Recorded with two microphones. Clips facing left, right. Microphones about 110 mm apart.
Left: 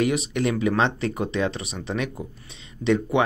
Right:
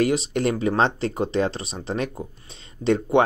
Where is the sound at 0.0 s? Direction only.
35° right (ahead or behind).